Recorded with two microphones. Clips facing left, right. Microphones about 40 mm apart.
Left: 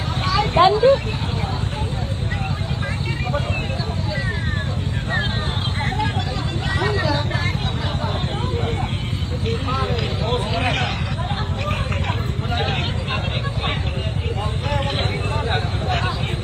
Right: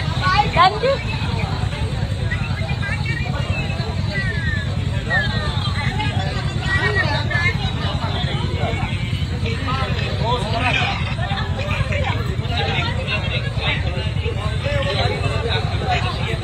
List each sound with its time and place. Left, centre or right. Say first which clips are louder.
0.2 s vehicle: right 1 dB; right
6.7 s vehicle: right 2 dB; right
10.2 s vehicle: right 3 dB; right